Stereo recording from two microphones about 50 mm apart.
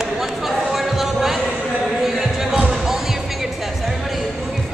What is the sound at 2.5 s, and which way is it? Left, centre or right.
Basketball bounce, centre.